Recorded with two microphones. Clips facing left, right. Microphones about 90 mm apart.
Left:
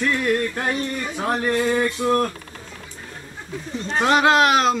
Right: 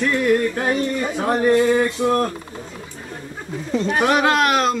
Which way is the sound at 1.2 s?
10° right (ahead or behind).